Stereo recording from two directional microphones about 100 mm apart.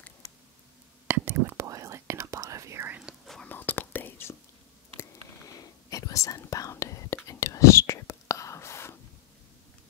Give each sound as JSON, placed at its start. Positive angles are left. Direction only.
{"t": 1.0, "sound": "whispering", "side_deg": -20}
{"t": 1.6, "sound": "whispering", "side_deg": -30}
{"t": 3.0, "sound": "whispering", "side_deg": -5}
{"t": 3.3, "sound": "whispering", "side_deg": 15}
{"t": 5.6, "sound": "whispering", "side_deg": 35}